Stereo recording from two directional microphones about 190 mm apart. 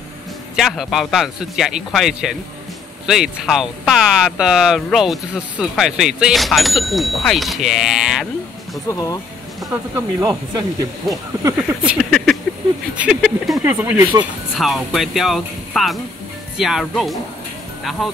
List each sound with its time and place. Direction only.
0.6 s speech: centre (ahead or behind)
8.8 s speech: 15° left (ahead or behind)
9.9 s speech: 20° right (ahead or behind)
11.4 s speech: 5° right (ahead or behind)